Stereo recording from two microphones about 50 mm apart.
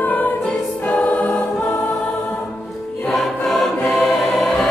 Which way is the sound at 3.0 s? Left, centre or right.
Centre.